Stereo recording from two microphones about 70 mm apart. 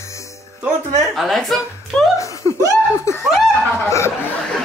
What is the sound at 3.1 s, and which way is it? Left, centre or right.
Snicker, left.